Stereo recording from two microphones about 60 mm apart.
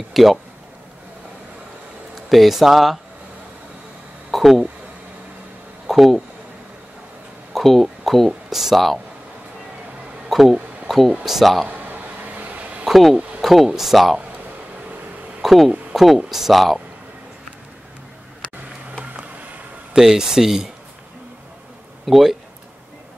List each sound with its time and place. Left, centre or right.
0.1 s speech: centre
2.2 s speech: centre
4.3 s speech: centre
5.9 s speech: centre
7.5 s speech: centre
10.3 s speech: centre
11.7 s a sound: right
12.8 s speech: centre
15.4 s speech: centre
19.9 s speech: centre
22.0 s speech: centre